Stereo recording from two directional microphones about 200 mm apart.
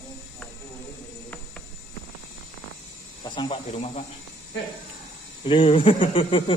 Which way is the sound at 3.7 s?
35° left (ahead or behind).